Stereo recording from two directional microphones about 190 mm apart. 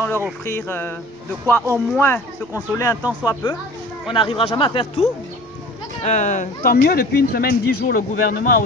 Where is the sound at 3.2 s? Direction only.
20° left (ahead or behind).